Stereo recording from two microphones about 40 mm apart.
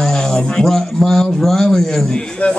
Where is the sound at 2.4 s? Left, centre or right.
Left.